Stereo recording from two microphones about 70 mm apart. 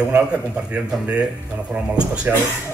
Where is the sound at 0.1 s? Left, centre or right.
Centre.